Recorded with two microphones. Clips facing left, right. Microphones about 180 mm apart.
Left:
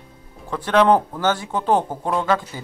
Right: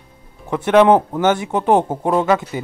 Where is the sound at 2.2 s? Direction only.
10° right (ahead or behind).